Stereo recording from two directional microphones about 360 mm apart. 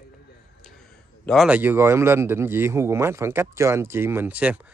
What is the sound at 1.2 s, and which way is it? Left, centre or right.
Speech, centre.